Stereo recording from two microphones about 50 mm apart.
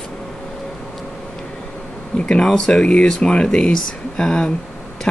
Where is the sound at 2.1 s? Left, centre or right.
Centre.